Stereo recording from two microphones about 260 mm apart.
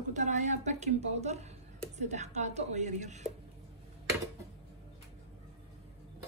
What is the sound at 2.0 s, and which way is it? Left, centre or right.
A woman's voice, right.